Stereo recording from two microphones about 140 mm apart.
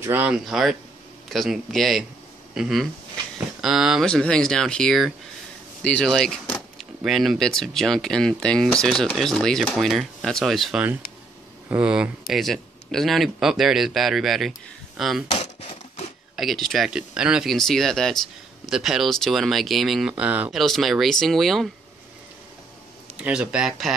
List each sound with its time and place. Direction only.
0.0 s speech: 15° right (ahead or behind)
0.3 s speech: 5° right (ahead or behind)
4.1 s speech: 5° left (ahead or behind)
16.3 s speech: centre (ahead or behind)
20.5 s speech: centre (ahead or behind)
23.1 s speech: 10° right (ahead or behind)